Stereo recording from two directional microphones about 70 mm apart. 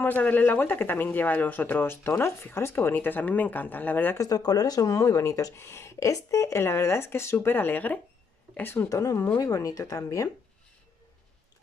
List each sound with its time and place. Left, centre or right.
0.0 s speech: left
4.2 s speech: left
8.8 s speech: left